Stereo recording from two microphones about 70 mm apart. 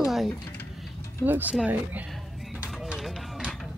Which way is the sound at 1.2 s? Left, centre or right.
Right.